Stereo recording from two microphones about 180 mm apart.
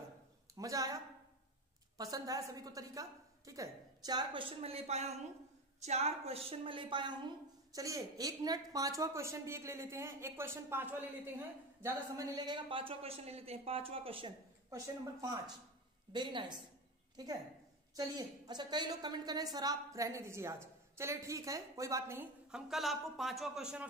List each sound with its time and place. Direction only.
0.6 s a woman's voice: 20° right (ahead or behind)
16.1 s a woman's voice: 25° right (ahead or behind); by 23.9 s 5° right (ahead or behind)